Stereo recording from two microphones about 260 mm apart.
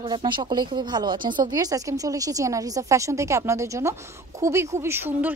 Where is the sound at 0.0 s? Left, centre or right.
Centre.